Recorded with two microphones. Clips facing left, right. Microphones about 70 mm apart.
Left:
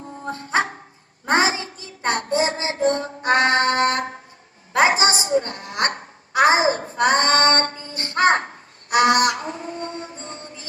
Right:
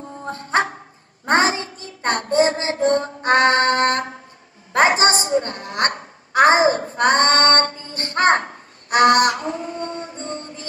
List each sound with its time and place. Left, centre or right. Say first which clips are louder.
0.5 s dog: right 2 dB; right
1.3 s a sound: right 2 dB; right
2.0 s child singing: right 3 dB; right
3.3 s music: right 2 dB; right
4.7 s a sound: right 2 dB; right
7.9 s music: right 1 dB; right